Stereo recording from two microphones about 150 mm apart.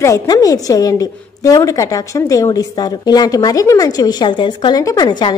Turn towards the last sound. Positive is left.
turn(degrees=30)  # may be behind; listen again after turning